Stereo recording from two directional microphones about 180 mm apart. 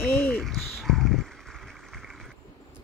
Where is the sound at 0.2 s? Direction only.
5° left (ahead or behind).